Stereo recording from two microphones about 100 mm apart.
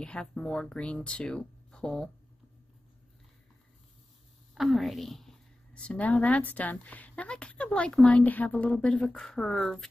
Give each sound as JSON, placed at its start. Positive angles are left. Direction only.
{"t": 0.0, "sound": "a woman's voice", "side_deg": 10}
{"t": 4.6, "sound": "a woman's voice", "side_deg": 0}